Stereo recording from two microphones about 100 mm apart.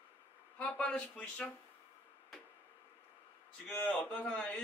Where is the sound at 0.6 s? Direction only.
10° left (ahead or behind).